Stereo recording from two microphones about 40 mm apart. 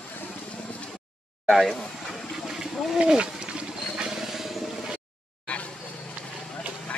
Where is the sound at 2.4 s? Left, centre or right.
Centre.